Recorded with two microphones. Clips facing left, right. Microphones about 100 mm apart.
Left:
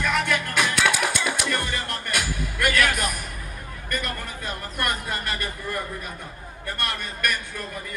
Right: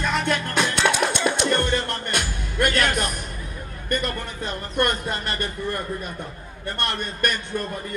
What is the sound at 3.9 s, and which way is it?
Speech, 25° right (ahead or behind).